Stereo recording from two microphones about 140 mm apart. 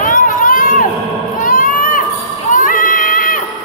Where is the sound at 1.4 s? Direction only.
80° left.